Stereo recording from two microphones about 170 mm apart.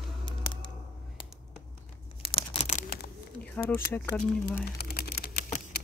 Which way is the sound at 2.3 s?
35° left (ahead or behind).